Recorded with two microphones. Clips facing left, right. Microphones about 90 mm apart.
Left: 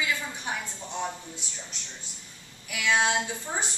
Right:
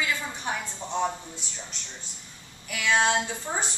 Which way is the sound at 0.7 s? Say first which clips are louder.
Right 5 dB; 25° right (ahead or behind).